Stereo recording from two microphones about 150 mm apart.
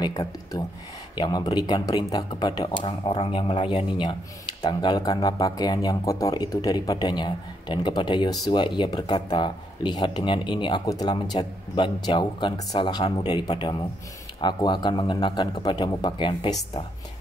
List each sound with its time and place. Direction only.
0.0 s speech: 25° left (ahead or behind)